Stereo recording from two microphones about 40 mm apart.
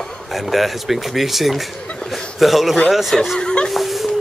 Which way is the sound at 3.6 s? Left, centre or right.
Centre.